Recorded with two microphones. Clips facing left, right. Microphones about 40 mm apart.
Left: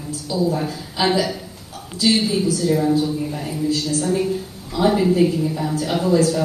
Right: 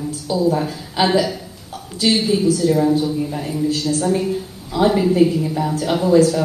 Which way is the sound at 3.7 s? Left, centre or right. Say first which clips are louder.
Left 1 dB; right.